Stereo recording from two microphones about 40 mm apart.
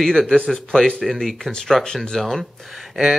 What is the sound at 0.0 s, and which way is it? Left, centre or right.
Speech, centre.